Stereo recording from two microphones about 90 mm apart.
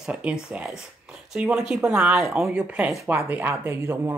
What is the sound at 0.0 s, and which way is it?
Speech, 10° right (ahead or behind).